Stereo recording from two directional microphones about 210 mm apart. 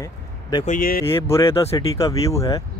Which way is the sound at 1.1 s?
10° left (ahead or behind).